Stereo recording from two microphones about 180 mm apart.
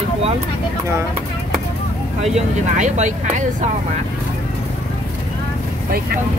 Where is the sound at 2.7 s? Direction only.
40° right (ahead or behind).